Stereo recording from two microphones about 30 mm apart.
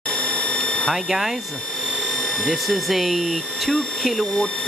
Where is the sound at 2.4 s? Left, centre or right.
Centre.